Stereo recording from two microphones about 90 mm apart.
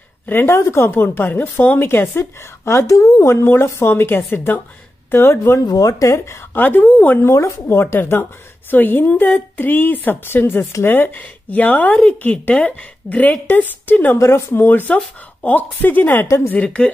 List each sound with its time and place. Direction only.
0.3 s speech: 25° left (ahead or behind)
5.7 s speech: 40° left (ahead or behind)
6.5 s speech: 20° left (ahead or behind)
7.2 s speech: 30° left (ahead or behind)
14.1 s speech: 30° left (ahead or behind); by 16.9 s 15° left (ahead or behind)